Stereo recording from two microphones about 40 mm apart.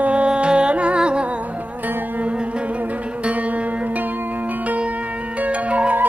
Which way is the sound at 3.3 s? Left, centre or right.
Right.